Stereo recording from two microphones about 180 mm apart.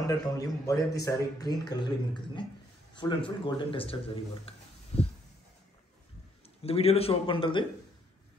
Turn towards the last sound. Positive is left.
turn(degrees=30)  # may be behind; listen again after turning